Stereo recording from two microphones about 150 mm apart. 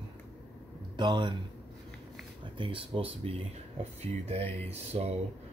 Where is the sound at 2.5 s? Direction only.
35° right (ahead or behind).